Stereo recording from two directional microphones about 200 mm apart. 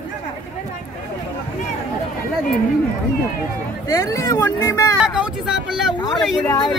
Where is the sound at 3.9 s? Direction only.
15° left (ahead or behind).